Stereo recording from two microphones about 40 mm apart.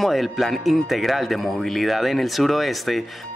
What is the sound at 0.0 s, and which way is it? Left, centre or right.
Speech, centre.